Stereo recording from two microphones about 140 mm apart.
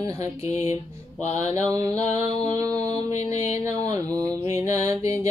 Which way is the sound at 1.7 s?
25° right (ahead or behind).